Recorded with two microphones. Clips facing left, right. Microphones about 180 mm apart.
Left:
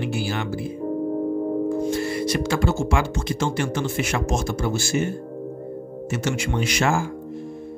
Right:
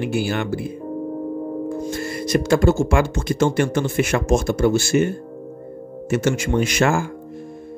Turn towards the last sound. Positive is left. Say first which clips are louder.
# right 4 dB
turn(degrees=-55)  # may be behind; listen again after turning